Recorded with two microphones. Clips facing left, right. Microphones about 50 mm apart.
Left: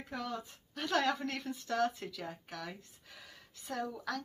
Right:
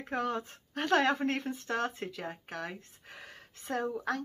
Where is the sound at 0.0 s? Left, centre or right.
Right.